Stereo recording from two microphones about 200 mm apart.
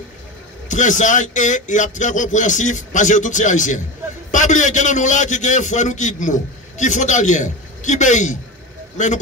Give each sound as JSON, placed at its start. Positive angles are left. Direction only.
{"t": 0.7, "sound": "a man's voice", "side_deg": 40}